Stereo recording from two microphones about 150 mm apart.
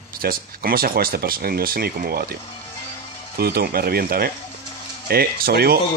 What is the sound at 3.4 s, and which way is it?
Speech, 90° right.